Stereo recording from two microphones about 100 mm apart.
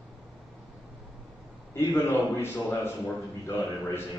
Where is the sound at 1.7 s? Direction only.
25° left (ahead or behind).